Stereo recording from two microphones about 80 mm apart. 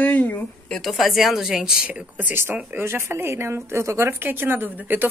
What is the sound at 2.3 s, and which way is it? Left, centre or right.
Speech, right.